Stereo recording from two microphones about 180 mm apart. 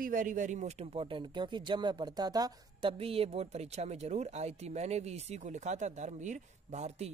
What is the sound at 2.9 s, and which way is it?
Speech, 30° right (ahead or behind).